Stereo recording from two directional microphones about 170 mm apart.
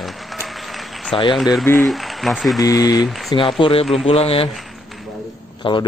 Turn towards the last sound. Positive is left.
turn(degrees=30)  # may be behind; listen again after turning